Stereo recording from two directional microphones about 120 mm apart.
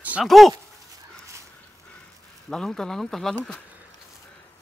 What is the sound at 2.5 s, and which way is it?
Speech, 5° left (ahead or behind).